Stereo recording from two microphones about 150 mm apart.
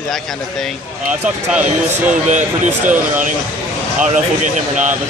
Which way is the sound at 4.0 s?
55° right (ahead or behind).